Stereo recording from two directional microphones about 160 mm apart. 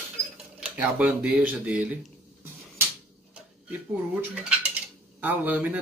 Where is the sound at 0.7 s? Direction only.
10° right (ahead or behind).